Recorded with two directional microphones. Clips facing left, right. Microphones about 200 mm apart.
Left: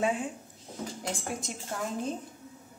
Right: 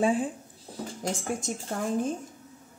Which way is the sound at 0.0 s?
30° right (ahead or behind).